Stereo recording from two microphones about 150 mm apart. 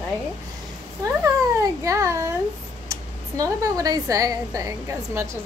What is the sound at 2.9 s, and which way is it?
Speech, 20° right (ahead or behind).